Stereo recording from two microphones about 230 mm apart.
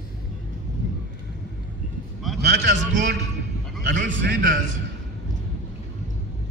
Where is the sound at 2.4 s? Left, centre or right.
Right.